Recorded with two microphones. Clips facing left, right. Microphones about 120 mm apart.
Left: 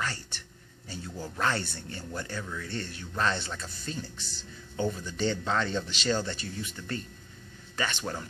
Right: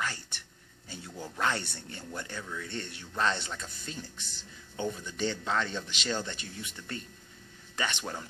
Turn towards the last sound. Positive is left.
turn(degrees=-20)  # may be behind; listen again after turning